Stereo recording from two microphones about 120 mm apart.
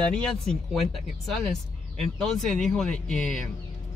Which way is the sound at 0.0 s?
5° left (ahead or behind).